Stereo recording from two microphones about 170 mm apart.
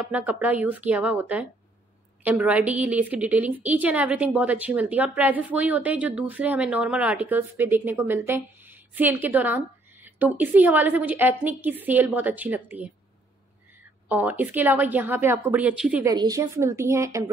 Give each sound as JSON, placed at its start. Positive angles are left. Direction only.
{"t": 0.0, "sound": "a woman's voice", "side_deg": -5}
{"t": 14.0, "sound": "a woman's voice", "side_deg": -10}
{"t": 16.1, "sound": "a woman's voice", "side_deg": -20}